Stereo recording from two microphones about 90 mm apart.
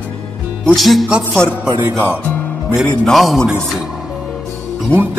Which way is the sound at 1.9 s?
15° left (ahead or behind).